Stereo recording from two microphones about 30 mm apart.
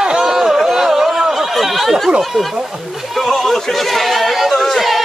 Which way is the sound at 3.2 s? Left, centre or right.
Centre.